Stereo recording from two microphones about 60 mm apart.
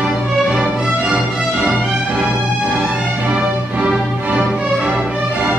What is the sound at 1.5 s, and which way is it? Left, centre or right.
Music, right.